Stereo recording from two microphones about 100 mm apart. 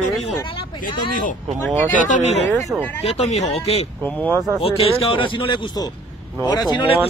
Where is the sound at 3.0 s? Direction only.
80° left.